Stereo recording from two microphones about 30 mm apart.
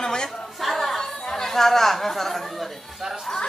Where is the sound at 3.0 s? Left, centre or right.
Centre.